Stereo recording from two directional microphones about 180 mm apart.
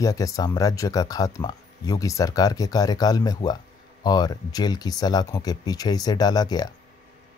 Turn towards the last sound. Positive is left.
turn(degrees=20)  # may be behind; listen again after turning